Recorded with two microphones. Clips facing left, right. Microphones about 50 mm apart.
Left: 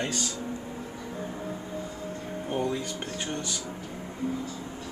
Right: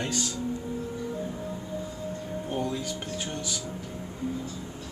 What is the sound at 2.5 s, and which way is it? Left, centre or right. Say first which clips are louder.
Speech: left 2 dB; centre.